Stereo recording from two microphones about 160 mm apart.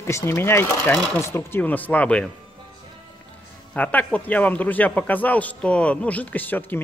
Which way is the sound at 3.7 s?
10° left (ahead or behind).